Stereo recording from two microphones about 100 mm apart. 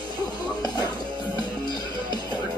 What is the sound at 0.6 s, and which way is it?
Music, 45° left (ahead or behind).